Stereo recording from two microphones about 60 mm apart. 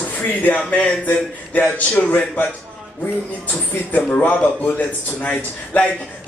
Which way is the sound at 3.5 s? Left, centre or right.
Left.